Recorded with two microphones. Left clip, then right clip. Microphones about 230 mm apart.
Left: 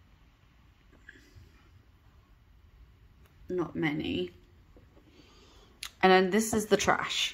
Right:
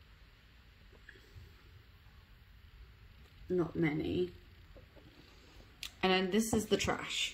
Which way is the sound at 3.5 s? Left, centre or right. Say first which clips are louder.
Left 2 dB; left.